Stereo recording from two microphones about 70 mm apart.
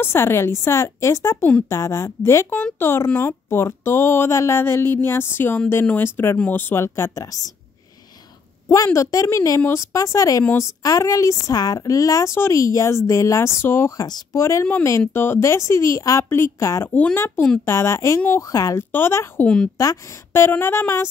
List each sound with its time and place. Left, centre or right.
0.0 s speech: left
2.8 s speech: left
8.6 s speech: left
13.9 s speech: left
14.3 s speech: left
14.6 s speech: left
16.8 s speech: left
17.6 s speech: left
18.4 s speech: left
18.9 s speech: left
19.4 s a woman's voice: centre
20.3 s speech: left